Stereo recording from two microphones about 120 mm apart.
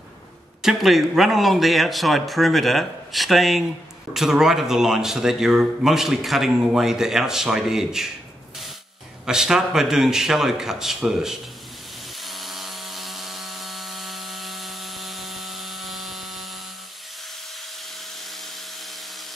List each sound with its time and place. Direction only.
0.6 s a man's voice: centre (ahead or behind)
9.2 s a man's voice: 5° right (ahead or behind)
12.2 s tools: centre (ahead or behind)